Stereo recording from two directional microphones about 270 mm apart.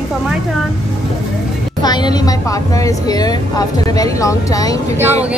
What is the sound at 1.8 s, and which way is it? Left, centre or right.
A woman's voice, centre.